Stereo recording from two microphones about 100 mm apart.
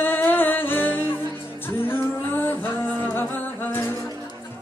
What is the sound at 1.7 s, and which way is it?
Music, 20° left (ahead or behind).